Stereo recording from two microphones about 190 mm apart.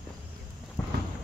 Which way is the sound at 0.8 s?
5° left (ahead or behind).